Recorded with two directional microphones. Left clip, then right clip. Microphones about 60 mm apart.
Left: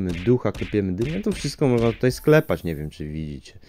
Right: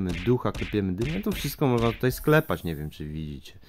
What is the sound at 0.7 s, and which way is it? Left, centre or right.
Speech, centre.